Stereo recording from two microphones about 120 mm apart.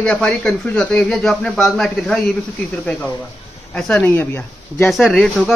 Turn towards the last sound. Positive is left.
turn(degrees=0)  # may be behind; listen again after turning